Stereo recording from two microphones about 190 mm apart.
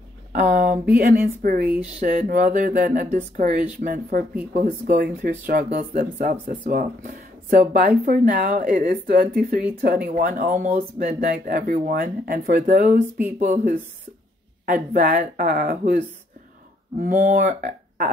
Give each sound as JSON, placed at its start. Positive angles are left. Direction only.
{"t": 0.3, "sound": "speech", "side_deg": -45}
{"t": 17.0, "sound": "speech", "side_deg": -45}